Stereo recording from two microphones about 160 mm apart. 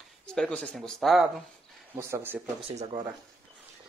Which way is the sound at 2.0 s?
15° right (ahead or behind).